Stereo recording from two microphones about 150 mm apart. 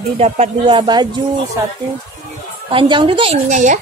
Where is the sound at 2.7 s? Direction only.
35° right (ahead or behind); by 3.8 s 55° right (ahead or behind).